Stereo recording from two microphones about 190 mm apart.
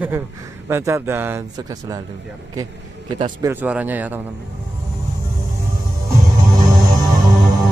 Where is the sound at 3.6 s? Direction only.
10° right (ahead or behind).